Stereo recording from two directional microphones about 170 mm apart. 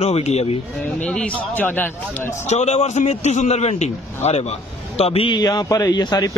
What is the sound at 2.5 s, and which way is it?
A man's voice, 40° left (ahead or behind).